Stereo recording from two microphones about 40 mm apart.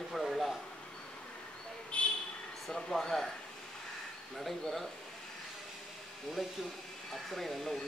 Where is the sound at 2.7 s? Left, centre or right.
Centre.